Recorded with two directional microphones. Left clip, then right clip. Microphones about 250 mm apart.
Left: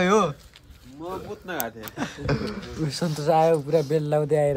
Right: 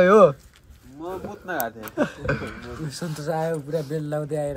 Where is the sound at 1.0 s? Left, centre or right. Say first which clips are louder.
Right 1 dB; centre.